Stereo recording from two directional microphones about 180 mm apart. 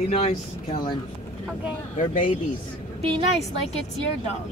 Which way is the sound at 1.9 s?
50° left (ahead or behind).